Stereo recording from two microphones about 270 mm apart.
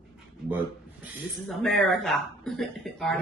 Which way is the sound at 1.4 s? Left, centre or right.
Centre.